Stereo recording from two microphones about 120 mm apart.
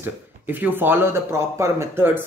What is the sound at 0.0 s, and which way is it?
Speech, 15° right (ahead or behind).